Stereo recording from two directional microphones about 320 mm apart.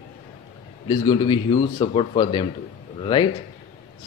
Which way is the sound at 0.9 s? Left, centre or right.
Centre.